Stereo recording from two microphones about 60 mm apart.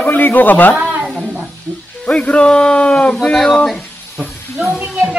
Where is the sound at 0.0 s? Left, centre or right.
Left.